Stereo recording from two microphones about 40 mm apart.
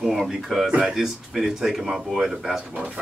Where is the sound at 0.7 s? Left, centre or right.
Right.